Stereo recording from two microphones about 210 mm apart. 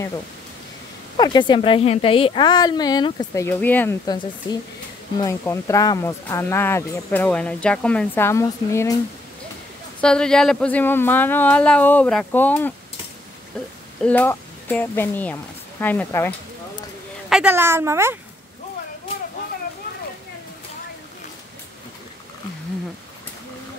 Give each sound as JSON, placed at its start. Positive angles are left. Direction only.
{"t": 1.1, "sound": "a woman's voice", "side_deg": 20}
{"t": 9.9, "sound": "speech", "side_deg": 5}
{"t": 14.0, "sound": "speech", "side_deg": 10}
{"t": 17.3, "sound": "speech", "side_deg": -5}